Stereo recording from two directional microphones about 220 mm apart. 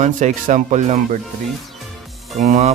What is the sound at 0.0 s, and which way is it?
Speech, 35° right (ahead or behind).